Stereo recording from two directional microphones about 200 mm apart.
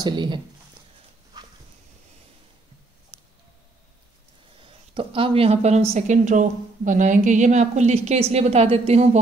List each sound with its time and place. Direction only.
0.0 s speech: 25° right (ahead or behind)
1.3 s dog: 20° right (ahead or behind)
3.1 s a sound: 5° right (ahead or behind)
4.6 s speech: 25° right (ahead or behind)